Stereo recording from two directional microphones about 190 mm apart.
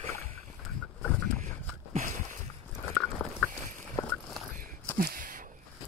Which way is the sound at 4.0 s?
15° left (ahead or behind).